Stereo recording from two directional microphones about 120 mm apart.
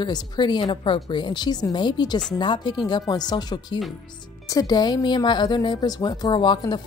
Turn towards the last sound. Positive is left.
turn(degrees=40)  # may be behind; listen again after turning